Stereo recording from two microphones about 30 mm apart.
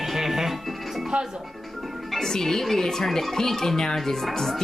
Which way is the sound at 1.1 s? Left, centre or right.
Right.